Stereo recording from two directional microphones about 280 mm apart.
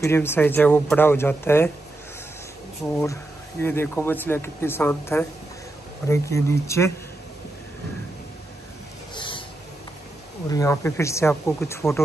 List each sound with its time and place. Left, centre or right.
0.0 s speech: centre
2.8 s speech: centre
9.1 s a sound: centre
10.5 s speech: centre